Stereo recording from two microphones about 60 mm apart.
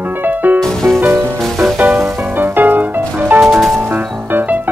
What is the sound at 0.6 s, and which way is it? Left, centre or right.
Music, centre.